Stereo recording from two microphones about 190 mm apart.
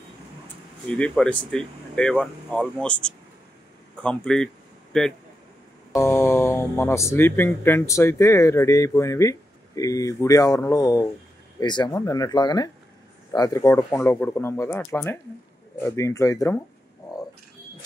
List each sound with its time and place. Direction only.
0.8 s speech: 5° left (ahead or behind)
5.9 s speech: 15° left (ahead or behind)